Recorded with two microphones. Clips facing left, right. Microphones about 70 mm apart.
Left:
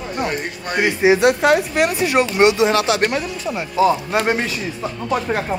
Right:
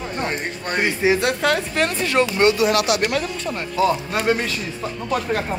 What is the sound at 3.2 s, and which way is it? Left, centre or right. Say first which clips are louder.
Speech: left 1 dB; centre.